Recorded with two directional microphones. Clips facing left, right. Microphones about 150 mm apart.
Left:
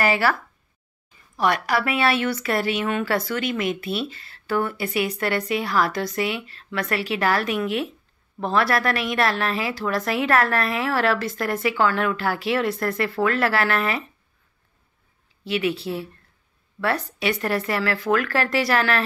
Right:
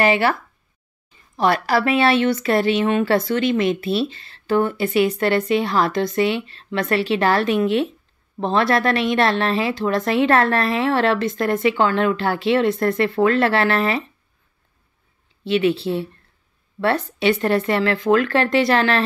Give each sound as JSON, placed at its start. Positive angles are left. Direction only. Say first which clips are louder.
{"t": 0.0, "sound": "a woman's voice", "louder": "right 4 dB", "side_deg": -20}
{"t": 15.4, "sound": "a woman's voice", "louder": "right 6 dB", "side_deg": -25}